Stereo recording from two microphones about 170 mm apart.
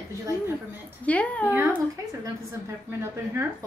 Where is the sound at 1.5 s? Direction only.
10° right (ahead or behind).